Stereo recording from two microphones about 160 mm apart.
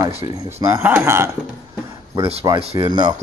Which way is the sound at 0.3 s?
20° right (ahead or behind).